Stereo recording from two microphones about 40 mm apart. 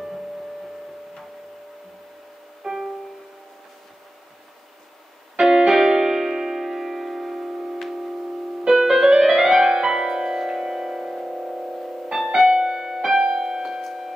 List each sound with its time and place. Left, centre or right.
2.6 s music: centre
5.4 s piano: centre
8.6 s music: centre
12.4 s music: centre
13.8 s tick-tock: centre